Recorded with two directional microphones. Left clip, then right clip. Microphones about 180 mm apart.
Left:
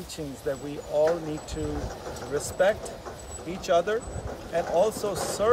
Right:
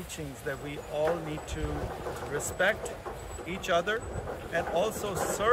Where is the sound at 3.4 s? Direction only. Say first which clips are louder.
Left 4 dB; 15° left (ahead or behind).